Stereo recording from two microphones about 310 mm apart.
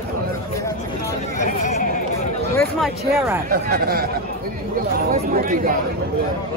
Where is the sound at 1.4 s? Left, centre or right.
Left.